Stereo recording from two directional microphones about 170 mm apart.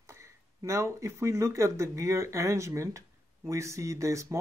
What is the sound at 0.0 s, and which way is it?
Speech, 15° right (ahead or behind).